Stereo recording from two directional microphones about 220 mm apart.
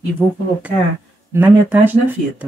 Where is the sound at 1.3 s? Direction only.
10° right (ahead or behind).